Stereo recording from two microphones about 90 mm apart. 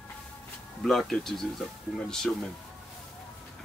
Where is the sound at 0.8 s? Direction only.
Centre (ahead or behind).